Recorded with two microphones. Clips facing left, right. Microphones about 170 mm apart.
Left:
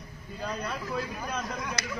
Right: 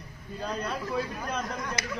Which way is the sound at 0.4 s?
Centre (ahead or behind).